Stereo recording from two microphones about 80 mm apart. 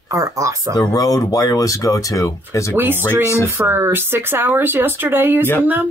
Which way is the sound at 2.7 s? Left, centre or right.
Right.